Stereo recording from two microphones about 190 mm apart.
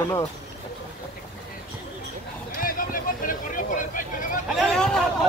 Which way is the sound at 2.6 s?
45° left (ahead or behind).